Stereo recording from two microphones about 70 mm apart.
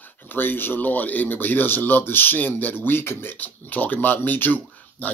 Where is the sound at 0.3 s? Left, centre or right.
Left.